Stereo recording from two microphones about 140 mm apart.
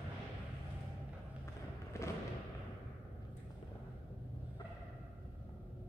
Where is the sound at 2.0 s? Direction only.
20° left (ahead or behind).